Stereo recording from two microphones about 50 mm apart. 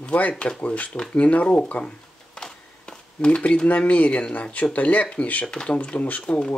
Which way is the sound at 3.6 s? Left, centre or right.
Left.